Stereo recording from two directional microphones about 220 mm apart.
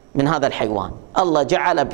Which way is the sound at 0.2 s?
20° right (ahead or behind).